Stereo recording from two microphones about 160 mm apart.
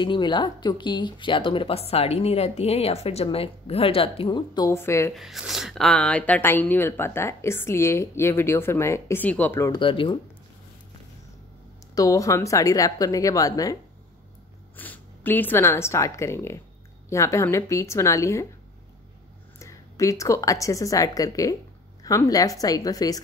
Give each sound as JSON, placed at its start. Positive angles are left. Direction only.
{"t": 0.0, "sound": "a woman's voice", "side_deg": 30}
{"t": 5.1, "sound": "speech", "side_deg": 0}
{"t": 9.7, "sound": "a woman's voice", "side_deg": 30}
{"t": 11.9, "sound": "a woman's voice", "side_deg": 20}
{"t": 14.8, "sound": "a woman's voice", "side_deg": 10}
{"t": 19.6, "sound": "a woman's voice", "side_deg": 20}